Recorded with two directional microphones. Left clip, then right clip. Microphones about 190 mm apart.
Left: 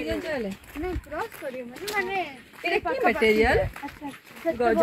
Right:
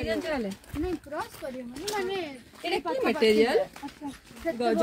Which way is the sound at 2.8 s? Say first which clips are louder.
Left 2 dB; 30° left (ahead or behind).